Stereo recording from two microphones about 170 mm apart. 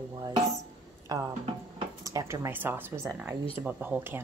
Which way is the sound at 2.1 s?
15° right (ahead or behind).